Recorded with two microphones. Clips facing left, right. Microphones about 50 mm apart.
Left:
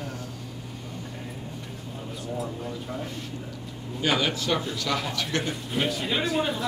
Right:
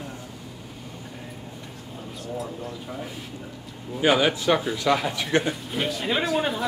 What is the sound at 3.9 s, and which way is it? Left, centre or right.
Speech, centre.